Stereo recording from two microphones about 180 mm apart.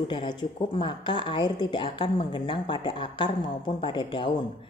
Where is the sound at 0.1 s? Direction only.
25° left (ahead or behind).